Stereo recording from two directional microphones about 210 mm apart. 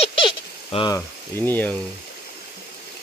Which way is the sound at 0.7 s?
20° left (ahead or behind).